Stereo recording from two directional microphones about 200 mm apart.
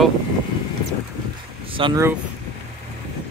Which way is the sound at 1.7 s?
25° right (ahead or behind).